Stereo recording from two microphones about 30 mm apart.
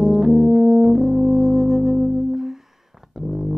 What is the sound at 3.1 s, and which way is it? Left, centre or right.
Music, centre.